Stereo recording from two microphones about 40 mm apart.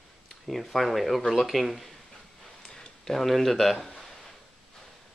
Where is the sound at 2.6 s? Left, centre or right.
Left.